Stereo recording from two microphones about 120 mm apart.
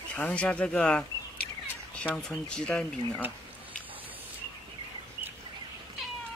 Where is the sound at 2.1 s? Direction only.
5° left (ahead or behind).